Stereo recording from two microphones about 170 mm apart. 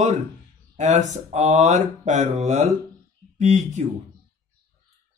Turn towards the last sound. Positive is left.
turn(degrees=-45)  # may be behind; listen again after turning